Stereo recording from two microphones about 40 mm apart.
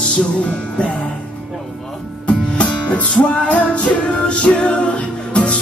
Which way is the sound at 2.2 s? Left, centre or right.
Left.